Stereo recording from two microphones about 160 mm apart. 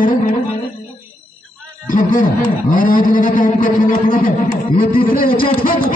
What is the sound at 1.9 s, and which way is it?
A man's voice, 55° left (ahead or behind).